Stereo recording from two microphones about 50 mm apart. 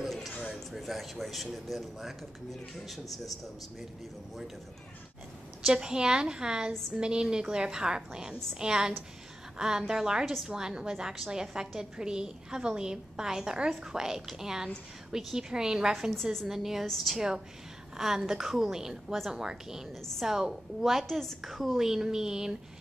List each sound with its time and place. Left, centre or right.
0.0 s a sound: centre
0.7 s speech: centre
5.7 s a woman's voice: centre
21.5 s a woman's voice: centre